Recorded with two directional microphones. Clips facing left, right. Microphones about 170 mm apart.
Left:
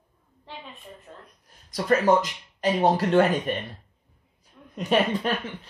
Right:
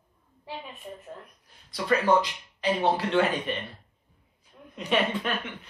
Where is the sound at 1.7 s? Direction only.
45° left (ahead or behind).